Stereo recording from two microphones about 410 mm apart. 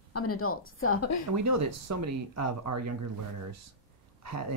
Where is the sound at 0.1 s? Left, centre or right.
Left.